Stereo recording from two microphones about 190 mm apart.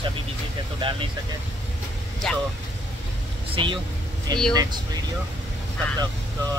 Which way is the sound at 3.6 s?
25° right (ahead or behind).